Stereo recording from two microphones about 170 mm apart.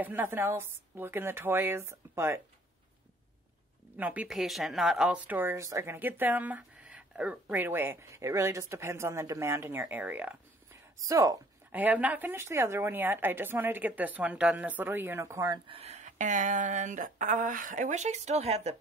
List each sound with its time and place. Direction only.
0.0 s speech: 10° right (ahead or behind)
3.9 s speech: 10° right (ahead or behind)
11.7 s speech: 10° right (ahead or behind); by 18.8 s 40° right (ahead or behind)